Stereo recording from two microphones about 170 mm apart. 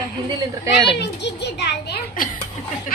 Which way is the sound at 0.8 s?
85° left.